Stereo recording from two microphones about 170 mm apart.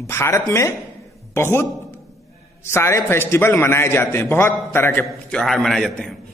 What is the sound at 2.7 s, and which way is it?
A man's voice, 15° left (ahead or behind).